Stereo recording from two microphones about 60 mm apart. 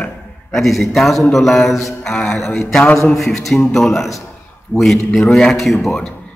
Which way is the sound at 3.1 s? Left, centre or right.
Centre.